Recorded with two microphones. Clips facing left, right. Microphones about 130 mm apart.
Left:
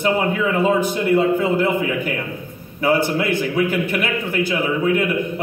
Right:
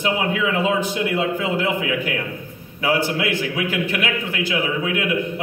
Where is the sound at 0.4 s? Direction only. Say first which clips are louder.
Left 3 dB; 45° left (ahead or behind).